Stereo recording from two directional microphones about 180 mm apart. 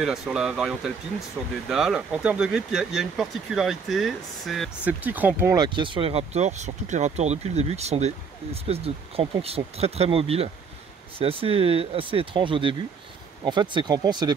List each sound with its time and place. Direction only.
0.0 s speech: centre (ahead or behind)
5.6 s speech: 25° right (ahead or behind)